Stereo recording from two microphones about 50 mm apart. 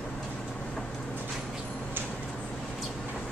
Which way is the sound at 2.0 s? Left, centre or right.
Right.